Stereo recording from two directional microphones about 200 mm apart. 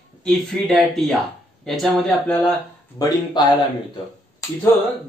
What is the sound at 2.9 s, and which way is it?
Speech, 20° left (ahead or behind).